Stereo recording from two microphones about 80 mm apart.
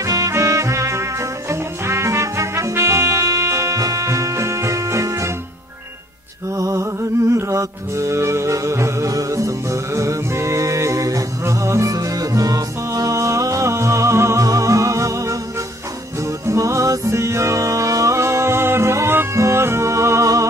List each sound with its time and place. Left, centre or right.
0.0 s music: right
6.5 s music: right